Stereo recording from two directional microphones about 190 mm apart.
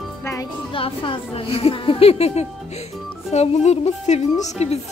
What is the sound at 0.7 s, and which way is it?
Speech, 25° left (ahead or behind).